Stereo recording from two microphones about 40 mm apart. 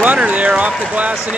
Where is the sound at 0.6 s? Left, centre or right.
Right.